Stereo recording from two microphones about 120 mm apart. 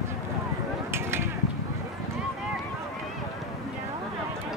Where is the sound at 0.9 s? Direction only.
20° right (ahead or behind).